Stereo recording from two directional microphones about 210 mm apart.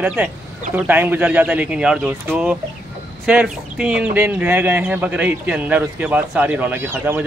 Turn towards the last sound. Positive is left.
turn(degrees=-10)  # may be behind; listen again after turning